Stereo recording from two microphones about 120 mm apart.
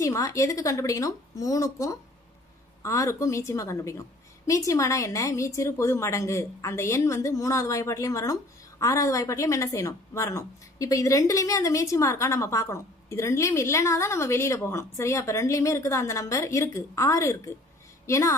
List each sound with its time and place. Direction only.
0.0 s a woman's voice: 25° left (ahead or behind)